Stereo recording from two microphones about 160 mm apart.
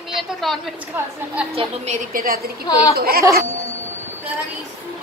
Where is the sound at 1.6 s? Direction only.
45° right (ahead or behind); by 3.2 s 70° right (ahead or behind).